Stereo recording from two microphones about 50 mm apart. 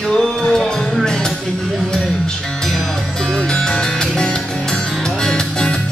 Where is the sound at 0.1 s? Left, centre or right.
Centre.